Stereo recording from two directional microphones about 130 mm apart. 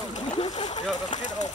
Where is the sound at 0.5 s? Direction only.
60° left (ahead or behind).